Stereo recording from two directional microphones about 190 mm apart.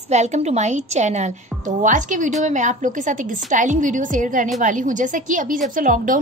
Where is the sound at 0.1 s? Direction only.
35° right (ahead or behind).